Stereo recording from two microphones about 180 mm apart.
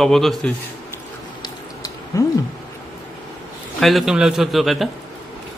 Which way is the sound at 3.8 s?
Centre (ahead or behind).